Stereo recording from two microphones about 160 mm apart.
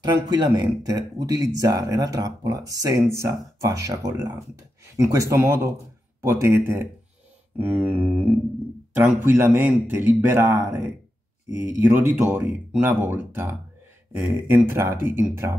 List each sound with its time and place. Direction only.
0.0 s speech: 25° right (ahead or behind)